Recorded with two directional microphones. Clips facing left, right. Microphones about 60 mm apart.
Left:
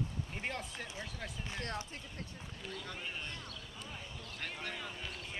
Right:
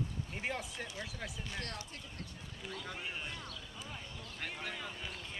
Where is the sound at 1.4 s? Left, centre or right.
Left.